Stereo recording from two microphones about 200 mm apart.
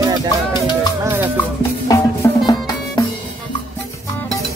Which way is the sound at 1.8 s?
20° left (ahead or behind).